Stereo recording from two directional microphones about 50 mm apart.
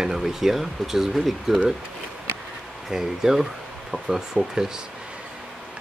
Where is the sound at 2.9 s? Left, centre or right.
Centre.